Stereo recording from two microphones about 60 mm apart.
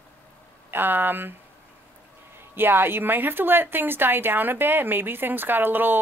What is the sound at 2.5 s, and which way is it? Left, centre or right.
A woman's voice, right.